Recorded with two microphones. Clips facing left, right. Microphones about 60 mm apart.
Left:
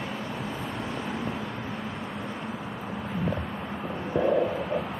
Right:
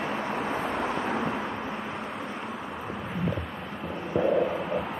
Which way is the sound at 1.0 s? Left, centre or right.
Right.